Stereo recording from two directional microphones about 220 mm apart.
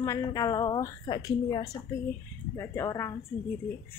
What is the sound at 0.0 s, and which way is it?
A woman's voice, 15° left (ahead or behind).